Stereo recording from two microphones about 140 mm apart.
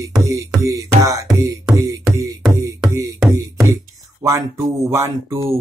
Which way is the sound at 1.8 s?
25° right (ahead or behind).